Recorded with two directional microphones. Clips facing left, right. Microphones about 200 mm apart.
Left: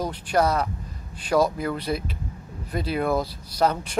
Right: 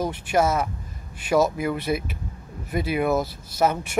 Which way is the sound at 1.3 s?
5° right (ahead or behind).